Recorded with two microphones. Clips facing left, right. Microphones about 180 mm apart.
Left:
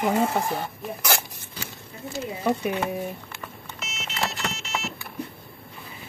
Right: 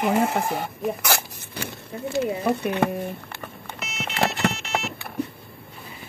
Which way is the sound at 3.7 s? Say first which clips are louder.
Right 5 dB; 60° right (ahead or behind).